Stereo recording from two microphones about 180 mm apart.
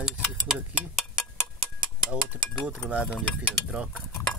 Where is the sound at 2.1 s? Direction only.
5° right (ahead or behind).